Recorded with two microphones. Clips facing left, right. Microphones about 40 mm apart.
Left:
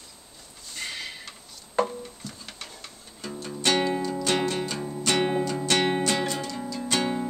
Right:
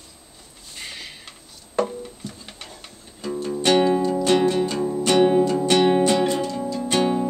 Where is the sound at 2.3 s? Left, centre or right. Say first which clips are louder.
Right 2 dB; centre.